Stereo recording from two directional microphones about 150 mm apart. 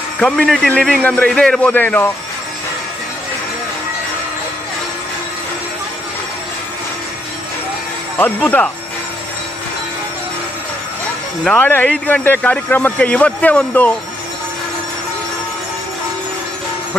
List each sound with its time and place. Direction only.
0.2 s a man's voice: 5° left (ahead or behind)
8.2 s a man's voice: 10° left (ahead or behind)
11.4 s a man's voice: 10° left (ahead or behind)